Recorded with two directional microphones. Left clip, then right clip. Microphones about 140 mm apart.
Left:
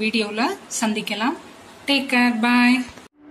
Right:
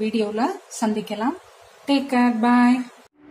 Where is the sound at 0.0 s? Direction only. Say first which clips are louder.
Left 1 dB; 50° right (ahead or behind).